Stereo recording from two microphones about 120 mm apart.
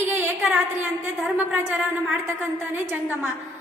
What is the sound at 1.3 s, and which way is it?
A woman's voice, 15° right (ahead or behind).